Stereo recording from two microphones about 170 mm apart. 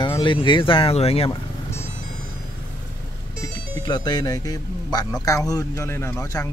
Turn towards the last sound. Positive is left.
turn(degrees=15)  # may be behind; listen again after turning